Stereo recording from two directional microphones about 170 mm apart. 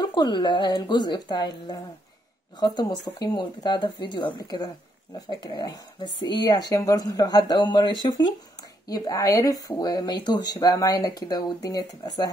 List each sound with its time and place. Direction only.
0.0 s speech: 25° left (ahead or behind)